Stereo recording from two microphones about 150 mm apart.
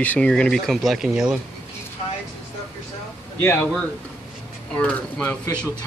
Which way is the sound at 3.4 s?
10° left (ahead or behind).